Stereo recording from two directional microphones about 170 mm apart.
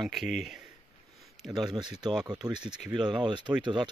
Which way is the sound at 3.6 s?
25° right (ahead or behind).